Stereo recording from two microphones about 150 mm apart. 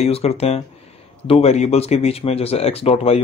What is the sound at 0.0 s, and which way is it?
A man's voice, 45° left (ahead or behind).